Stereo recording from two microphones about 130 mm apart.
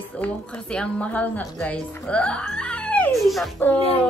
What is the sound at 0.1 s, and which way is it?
A woman's voice, 10° left (ahead or behind).